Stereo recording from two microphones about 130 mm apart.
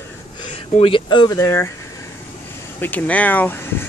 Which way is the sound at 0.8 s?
40° left (ahead or behind).